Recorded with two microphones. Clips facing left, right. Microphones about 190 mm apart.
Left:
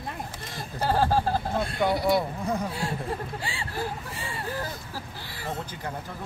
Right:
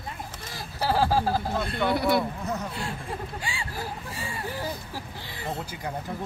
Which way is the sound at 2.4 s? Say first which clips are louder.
Left 3 dB; 10° left (ahead or behind).